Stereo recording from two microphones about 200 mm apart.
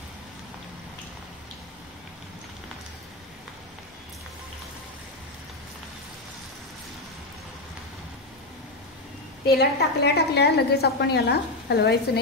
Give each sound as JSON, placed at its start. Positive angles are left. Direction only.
{"t": 9.5, "sound": "a woman's voice", "side_deg": 50}